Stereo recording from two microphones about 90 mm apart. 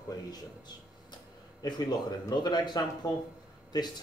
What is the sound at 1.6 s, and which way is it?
Speech, 50° left (ahead or behind).